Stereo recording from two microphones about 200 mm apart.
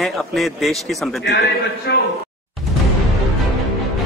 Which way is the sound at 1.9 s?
55° left (ahead or behind).